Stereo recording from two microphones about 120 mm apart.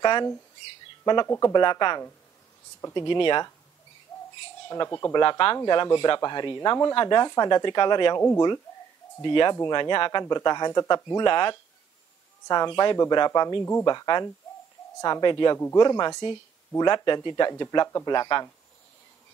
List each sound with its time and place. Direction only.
0.0 s speech: 35° left (ahead or behind)
4.6 s speech: 30° left (ahead or behind)
5.2 s speech: 45° left (ahead or behind)
9.2 s speech: 40° left (ahead or behind)
13.6 s speech: 20° left (ahead or behind)
13.8 s speech: 35° left (ahead or behind)
15.5 s speech: 25° left (ahead or behind)